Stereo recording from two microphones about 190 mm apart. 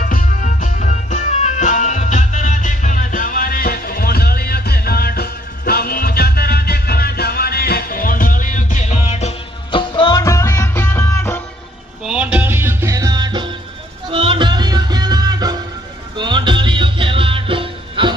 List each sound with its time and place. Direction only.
0.0 s music: 45° left (ahead or behind); by 11.4 s 15° left (ahead or behind)
12.0 s music: 5° right (ahead or behind); by 18.1 s 25° right (ahead or behind)